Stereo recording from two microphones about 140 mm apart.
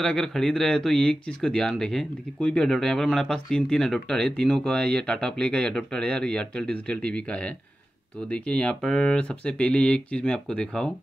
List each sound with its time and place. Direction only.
0.0 s speech: 5° left (ahead or behind)